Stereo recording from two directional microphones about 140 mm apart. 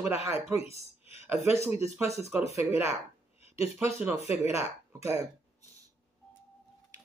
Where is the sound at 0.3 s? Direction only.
20° right (ahead or behind).